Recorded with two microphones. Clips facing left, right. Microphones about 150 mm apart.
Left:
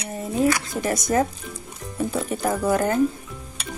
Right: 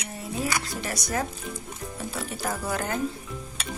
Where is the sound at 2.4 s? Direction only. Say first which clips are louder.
Left 8 dB; 45° left (ahead or behind).